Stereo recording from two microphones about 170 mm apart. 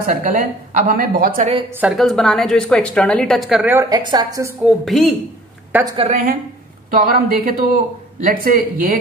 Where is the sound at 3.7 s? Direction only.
25° right (ahead or behind).